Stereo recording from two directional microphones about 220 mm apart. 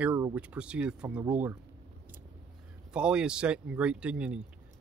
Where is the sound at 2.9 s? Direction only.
5° right (ahead or behind).